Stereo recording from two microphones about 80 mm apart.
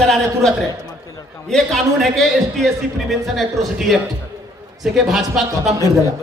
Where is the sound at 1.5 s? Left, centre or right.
Centre.